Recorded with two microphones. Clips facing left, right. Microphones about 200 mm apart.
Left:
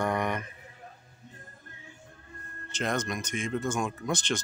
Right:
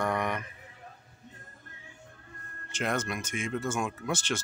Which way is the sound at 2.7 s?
10° right (ahead or behind).